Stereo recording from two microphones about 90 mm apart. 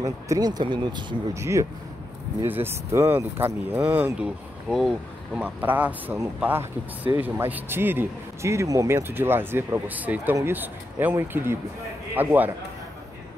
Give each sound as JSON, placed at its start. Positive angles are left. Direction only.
{"t": 0.0, "sound": "speech", "side_deg": -45}
{"t": 1.3, "sound": "speech", "side_deg": -35}
{"t": 4.6, "sound": "speech", "side_deg": -5}
{"t": 5.4, "sound": "a man's voice", "side_deg": -20}